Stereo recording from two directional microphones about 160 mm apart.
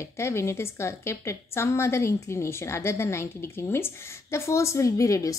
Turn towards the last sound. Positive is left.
turn(degrees=20)  # may be behind; listen again after turning